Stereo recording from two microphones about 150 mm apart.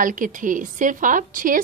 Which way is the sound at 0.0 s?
60° right (ahead or behind).